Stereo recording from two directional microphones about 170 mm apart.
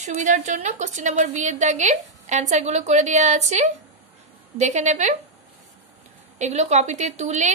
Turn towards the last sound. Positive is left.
turn(degrees=-40)  # may be behind; listen again after turning